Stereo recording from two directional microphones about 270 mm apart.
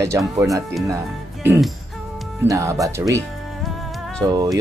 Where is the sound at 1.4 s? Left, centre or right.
Centre.